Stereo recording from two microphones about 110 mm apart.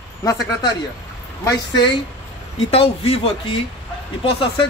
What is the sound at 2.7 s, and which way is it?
Speech, 60° left (ahead or behind).